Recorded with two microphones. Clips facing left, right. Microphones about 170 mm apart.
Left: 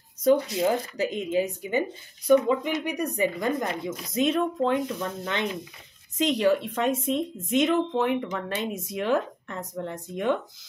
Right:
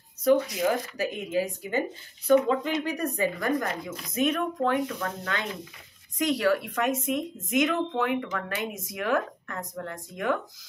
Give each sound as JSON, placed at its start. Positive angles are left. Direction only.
{"t": 0.2, "sound": "speech", "side_deg": 25}